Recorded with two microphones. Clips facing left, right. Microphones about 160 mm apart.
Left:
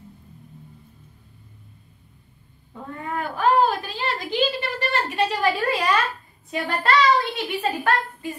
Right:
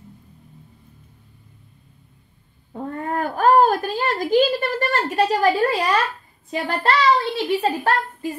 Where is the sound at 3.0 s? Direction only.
45° right (ahead or behind).